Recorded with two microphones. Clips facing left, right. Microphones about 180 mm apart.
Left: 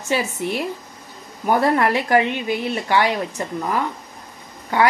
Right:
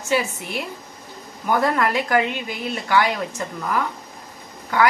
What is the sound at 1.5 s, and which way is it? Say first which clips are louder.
A woman's voice: left 3 dB; 30° left (ahead or behind).